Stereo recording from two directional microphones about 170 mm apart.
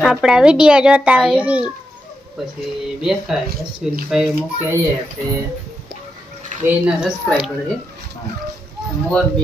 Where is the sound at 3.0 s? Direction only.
Centre (ahead or behind).